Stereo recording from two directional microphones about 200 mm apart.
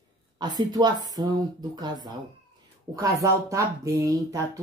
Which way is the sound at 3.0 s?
15° right (ahead or behind).